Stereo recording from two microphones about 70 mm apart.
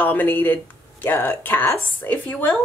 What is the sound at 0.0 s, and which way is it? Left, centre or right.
Speech, left.